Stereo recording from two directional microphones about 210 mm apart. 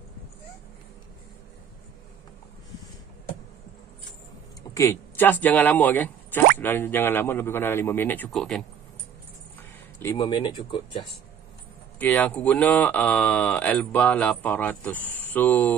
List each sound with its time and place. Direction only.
4.7 s speech: 10° left (ahead or behind)
10.1 s speech: 20° left (ahead or behind)
12.0 s speech: 10° left (ahead or behind)